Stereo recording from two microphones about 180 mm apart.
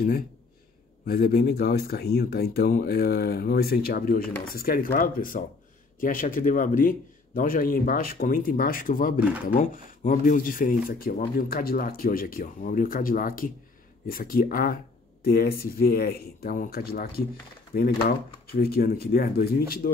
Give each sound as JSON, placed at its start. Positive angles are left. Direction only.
{"t": 1.0, "sound": "speech", "side_deg": 55}
{"t": 19.8, "sound": "speech", "side_deg": 50}